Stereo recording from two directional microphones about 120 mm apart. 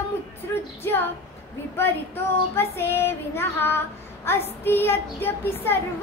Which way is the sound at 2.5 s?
20° left (ahead or behind).